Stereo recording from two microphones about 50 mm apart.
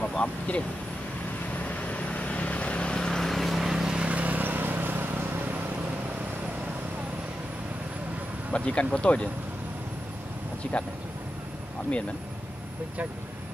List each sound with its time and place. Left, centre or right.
0.0 s vehicle: left; by 3.6 s centre
3.6 s vehicle: centre
4.1 s vehicle: right
8.5 s speech: left
10.7 s speech: left